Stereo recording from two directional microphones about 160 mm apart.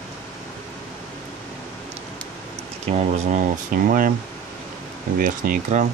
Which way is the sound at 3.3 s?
60° right (ahead or behind).